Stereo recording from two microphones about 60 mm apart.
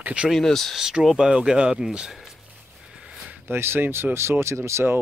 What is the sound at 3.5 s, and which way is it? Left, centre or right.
Speech, right.